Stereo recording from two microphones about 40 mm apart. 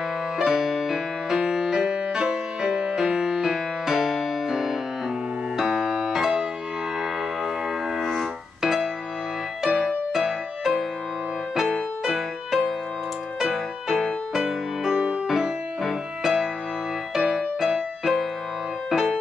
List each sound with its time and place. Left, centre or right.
0.4 s music: centre
8.0 s music: centre
9.6 s music: right
12.0 s music: centre